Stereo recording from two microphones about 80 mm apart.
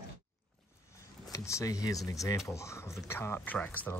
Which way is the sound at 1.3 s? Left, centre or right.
Left.